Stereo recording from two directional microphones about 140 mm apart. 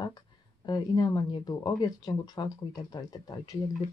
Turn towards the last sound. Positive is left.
turn(degrees=25)  # may be behind; listen again after turning